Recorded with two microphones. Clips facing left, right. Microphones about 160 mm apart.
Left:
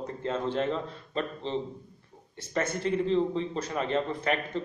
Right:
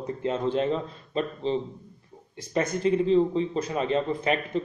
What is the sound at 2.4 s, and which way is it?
Speech, 15° right (ahead or behind).